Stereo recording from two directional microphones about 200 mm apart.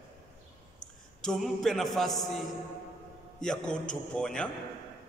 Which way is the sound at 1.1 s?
Centre (ahead or behind).